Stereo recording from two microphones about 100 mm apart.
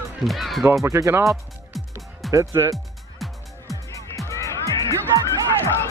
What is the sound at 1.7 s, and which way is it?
Music, centre (ahead or behind).